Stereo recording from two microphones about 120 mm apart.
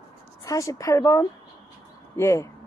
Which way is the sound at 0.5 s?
25° left (ahead or behind).